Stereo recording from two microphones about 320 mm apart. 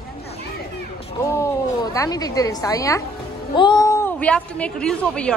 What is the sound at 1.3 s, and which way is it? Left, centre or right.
A woman's voice, centre.